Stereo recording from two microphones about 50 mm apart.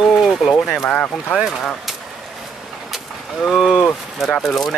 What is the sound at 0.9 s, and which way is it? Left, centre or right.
Speech, left.